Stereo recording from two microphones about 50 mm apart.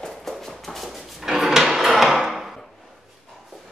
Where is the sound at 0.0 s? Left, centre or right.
Centre.